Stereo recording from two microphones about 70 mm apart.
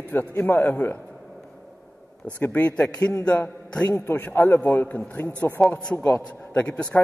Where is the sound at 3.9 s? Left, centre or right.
Left.